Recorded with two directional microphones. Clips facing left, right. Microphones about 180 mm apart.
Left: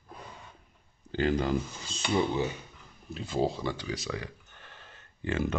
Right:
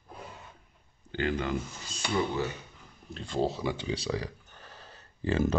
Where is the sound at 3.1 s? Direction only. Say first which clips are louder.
Left 1 dB; 5° left (ahead or behind).